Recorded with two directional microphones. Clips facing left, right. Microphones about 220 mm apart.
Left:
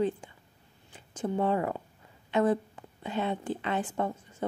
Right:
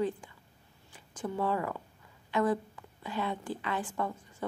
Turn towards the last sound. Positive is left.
turn(degrees=25)  # may be behind; listen again after turning